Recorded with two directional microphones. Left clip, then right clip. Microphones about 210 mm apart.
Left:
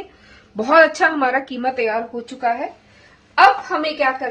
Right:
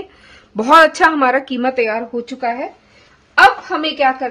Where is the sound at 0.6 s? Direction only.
45° right (ahead or behind).